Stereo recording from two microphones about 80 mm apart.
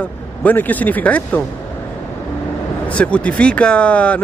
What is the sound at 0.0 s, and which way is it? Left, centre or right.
Speech, left.